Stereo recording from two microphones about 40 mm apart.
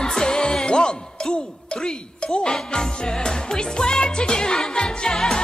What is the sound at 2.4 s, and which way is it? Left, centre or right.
Music, centre.